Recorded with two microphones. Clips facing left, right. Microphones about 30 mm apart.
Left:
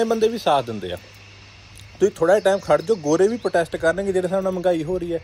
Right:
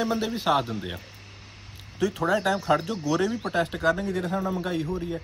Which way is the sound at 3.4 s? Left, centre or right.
Left.